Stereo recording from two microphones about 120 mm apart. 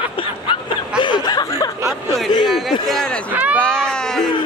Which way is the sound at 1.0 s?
40° left (ahead or behind).